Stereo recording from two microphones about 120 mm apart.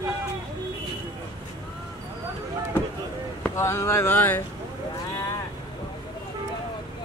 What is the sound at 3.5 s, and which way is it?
Speech, 20° left (ahead or behind).